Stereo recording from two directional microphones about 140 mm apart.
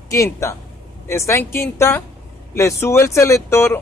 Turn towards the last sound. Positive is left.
turn(degrees=20)  # may be behind; listen again after turning